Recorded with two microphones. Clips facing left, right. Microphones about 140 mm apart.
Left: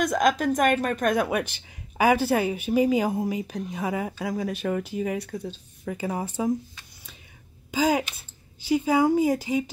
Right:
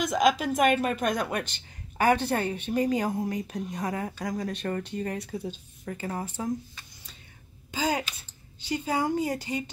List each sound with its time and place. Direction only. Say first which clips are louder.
0.0 s a woman's voice: left 2 dB; centre (ahead or behind)
5.3 s a woman's voice: left 1 dB; 10° right (ahead or behind)
5.9 s speech: left 4 dB; 10° left (ahead or behind)
7.7 s a woman's voice: left 5 dB; 10° left (ahead or behind)